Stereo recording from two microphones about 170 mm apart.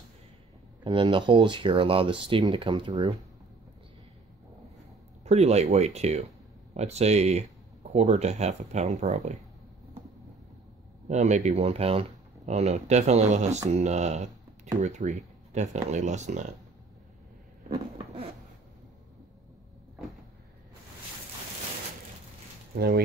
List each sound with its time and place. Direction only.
0.8 s speech: 30° right (ahead or behind)
5.2 s speech: 40° right (ahead or behind)
11.1 s speech: 45° right (ahead or behind)
17.6 s a sound: 30° right (ahead or behind)
22.8 s speech: 65° right (ahead or behind)